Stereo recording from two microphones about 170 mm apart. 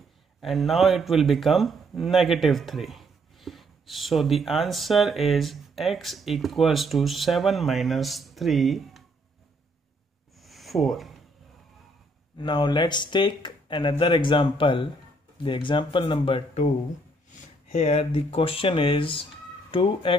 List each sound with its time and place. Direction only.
0.4 s speech: centre (ahead or behind)
10.4 s a sound: centre (ahead or behind)
12.4 s speech: 25° left (ahead or behind)
17.7 s speech: 40° left (ahead or behind)